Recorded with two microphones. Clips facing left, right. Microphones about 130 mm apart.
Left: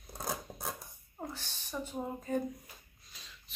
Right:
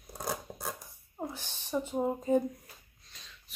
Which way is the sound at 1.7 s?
25° right (ahead or behind).